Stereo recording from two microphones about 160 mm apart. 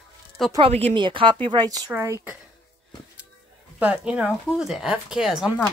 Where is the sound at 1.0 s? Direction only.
30° right (ahead or behind); by 2.3 s 15° right (ahead or behind).